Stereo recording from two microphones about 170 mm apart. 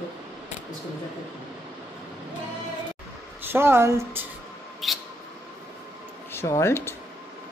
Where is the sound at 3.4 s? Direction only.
15° right (ahead or behind).